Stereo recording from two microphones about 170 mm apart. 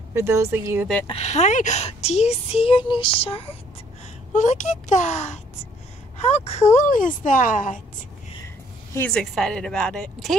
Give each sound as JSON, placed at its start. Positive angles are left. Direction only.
{"t": 0.1, "sound": "speech", "side_deg": -15}
{"t": 1.0, "sound": "speech", "side_deg": 40}
{"t": 4.3, "sound": "a woman's voice", "side_deg": 45}
{"t": 9.1, "sound": "a woman's voice", "side_deg": 0}